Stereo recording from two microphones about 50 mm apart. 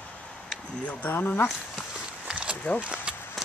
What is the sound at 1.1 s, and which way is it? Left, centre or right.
Speech, left.